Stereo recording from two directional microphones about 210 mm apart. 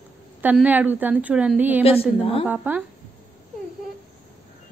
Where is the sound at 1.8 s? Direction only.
25° left (ahead or behind).